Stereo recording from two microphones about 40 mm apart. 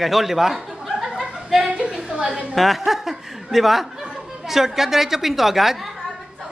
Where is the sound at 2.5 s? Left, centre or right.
Centre.